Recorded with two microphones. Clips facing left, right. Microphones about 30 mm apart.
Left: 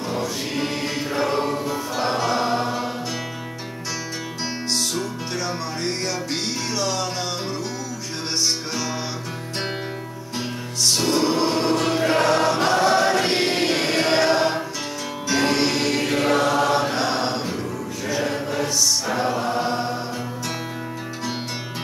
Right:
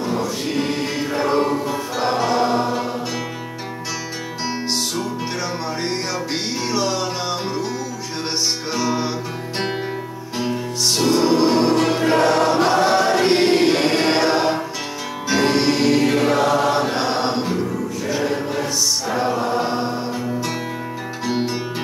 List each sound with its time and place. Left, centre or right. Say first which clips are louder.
0.1 s music: right 1 dB; centre
5.8 s music: right 1 dB; centre
8.7 s music: right 6 dB; centre
11.0 s music: right 6 dB; centre
12.1 s choir: right 2 dB; centre
15.2 s music: right 3 dB; centre
18.0 s choir: right 1 dB; centre